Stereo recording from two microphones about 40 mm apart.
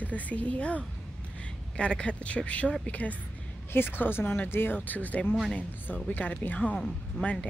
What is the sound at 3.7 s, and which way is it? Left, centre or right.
A woman's voice, left.